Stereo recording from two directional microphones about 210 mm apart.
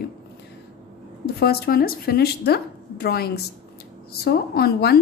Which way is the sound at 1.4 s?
45° left (ahead or behind).